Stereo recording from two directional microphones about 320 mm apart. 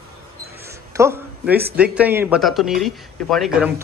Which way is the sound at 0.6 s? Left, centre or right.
Centre.